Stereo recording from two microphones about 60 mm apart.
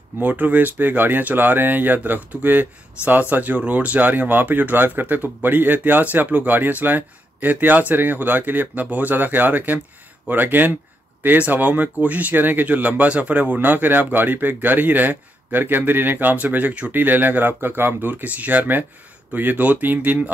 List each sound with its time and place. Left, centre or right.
0.2 s speech: right
18.2 s speech: right